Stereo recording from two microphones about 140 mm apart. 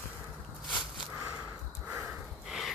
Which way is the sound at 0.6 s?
35° left (ahead or behind).